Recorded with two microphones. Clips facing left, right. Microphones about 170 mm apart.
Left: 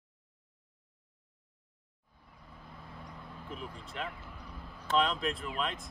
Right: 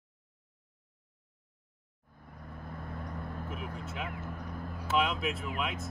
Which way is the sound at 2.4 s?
55° right (ahead or behind).